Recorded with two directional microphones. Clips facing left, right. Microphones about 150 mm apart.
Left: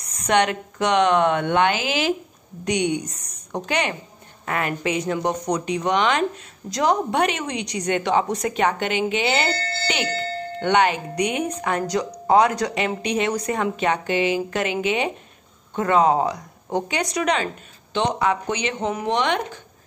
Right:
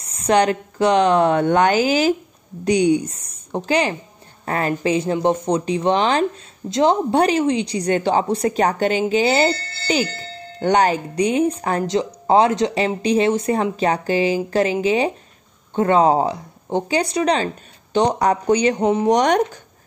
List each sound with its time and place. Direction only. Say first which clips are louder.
0.0 s a woman's voice: right 3 dB; 30° right (ahead or behind)